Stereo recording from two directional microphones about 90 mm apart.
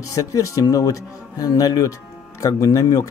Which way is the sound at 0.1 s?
40° left (ahead or behind).